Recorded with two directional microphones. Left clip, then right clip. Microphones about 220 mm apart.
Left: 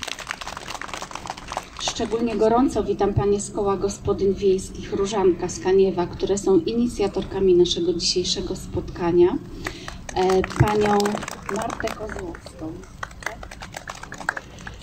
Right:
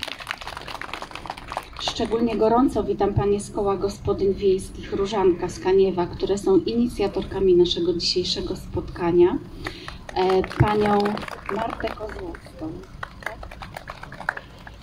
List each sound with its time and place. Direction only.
1.9 s a woman's voice: 10° right (ahead or behind)
10.1 s a sound: 10° left (ahead or behind)
10.6 s speech: 5° left (ahead or behind)
11.0 s speech: 45° left (ahead or behind)
14.3 s typing: 5° left (ahead or behind)